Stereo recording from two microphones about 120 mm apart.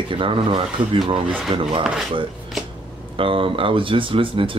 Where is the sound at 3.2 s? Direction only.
45° right (ahead or behind).